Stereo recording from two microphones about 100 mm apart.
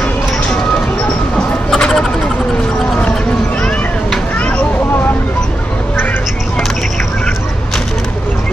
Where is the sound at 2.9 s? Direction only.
10° left (ahead or behind).